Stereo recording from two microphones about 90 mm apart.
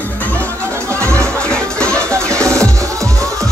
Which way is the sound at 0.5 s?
30° right (ahead or behind).